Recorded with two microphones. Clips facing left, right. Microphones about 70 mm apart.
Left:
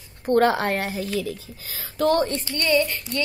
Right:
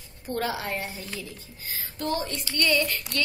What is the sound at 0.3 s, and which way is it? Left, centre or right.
A woman's voice, left.